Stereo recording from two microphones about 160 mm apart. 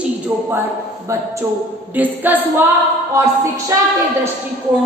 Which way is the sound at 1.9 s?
10° right (ahead or behind).